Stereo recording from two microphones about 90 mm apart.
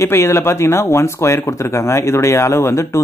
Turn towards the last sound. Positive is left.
turn(degrees=30)  # may be behind; listen again after turning